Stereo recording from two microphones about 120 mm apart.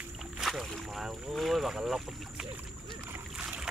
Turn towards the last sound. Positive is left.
turn(degrees=-10)  # may be behind; listen again after turning